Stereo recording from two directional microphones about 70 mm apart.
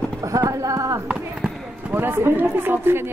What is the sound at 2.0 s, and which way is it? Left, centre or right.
Speech, right.